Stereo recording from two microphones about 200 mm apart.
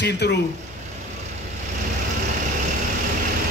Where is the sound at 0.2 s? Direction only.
55° left (ahead or behind).